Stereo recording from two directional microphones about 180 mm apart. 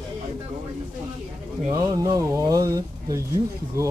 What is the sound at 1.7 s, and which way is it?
Speech, 20° right (ahead or behind).